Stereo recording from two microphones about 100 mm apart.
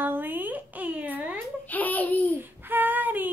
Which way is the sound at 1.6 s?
15° left (ahead or behind).